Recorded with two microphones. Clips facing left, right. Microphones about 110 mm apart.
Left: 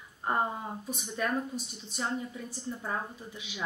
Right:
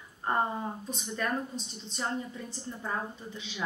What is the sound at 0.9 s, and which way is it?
Speech, 10° left (ahead or behind).